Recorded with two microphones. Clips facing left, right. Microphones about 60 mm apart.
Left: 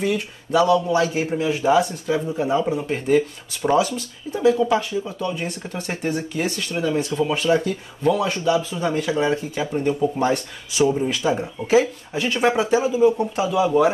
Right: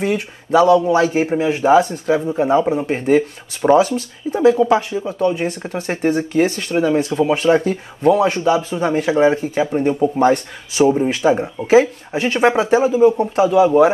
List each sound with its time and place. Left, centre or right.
0.0 s speech: right
3.7 s speech: right